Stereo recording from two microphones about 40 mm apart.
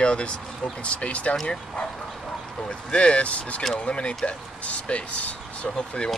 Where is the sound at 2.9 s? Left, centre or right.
Left.